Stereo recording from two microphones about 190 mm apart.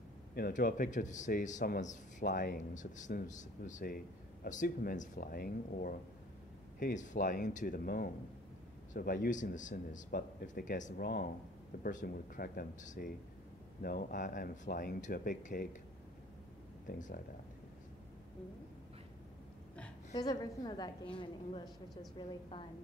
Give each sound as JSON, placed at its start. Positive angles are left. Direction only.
{"t": 0.3, "sound": "speech", "side_deg": 50}
{"t": 16.8, "sound": "speech", "side_deg": 45}
{"t": 20.2, "sound": "a woman's voice", "side_deg": 20}